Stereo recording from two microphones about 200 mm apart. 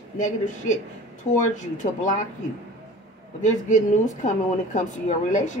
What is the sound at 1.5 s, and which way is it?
Speech, 40° left (ahead or behind).